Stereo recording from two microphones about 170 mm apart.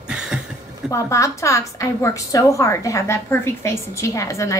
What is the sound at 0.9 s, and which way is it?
A woman's voice, 20° left (ahead or behind).